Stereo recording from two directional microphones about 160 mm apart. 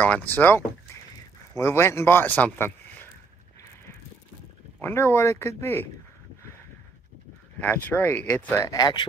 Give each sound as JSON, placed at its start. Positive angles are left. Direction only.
{"t": 0.0, "sound": "speech", "side_deg": 10}
{"t": 4.8, "sound": "speech", "side_deg": 15}
{"t": 7.6, "sound": "speech", "side_deg": 10}
{"t": 8.5, "sound": "speech", "side_deg": 25}